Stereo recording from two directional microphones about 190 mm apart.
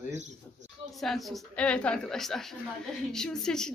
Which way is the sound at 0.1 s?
40° right (ahead or behind).